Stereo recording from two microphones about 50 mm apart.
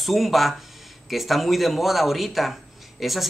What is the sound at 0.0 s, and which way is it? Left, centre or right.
Speech, centre.